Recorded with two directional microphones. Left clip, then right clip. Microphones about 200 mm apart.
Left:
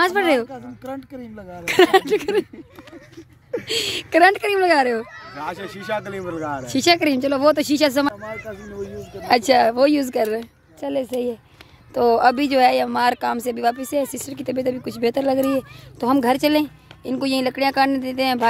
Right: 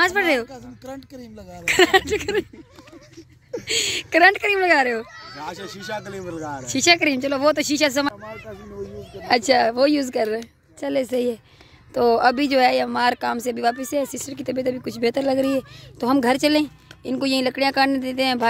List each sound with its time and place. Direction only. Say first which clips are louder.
0.0 s speech: left 1 dB; 5° left (ahead or behind)
3.5 s speech: even; centre (ahead or behind)
5.1 s a sound: left 2 dB; 55° right (ahead or behind)
5.4 s speech: left 4 dB; centre (ahead or behind)
9.2 s speech: left 2 dB; 5° right (ahead or behind)
10.8 s a child's voice: right 1 dB; 25° right (ahead or behind)
11.9 s speech: left 1 dB; 15° right (ahead or behind)